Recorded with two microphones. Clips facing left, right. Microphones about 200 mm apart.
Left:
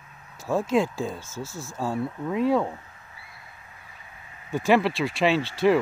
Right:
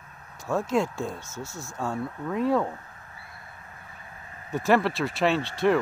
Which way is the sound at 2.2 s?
20° left (ahead or behind).